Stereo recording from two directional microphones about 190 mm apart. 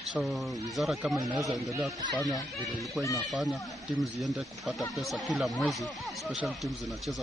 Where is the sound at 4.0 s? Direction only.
Centre (ahead or behind).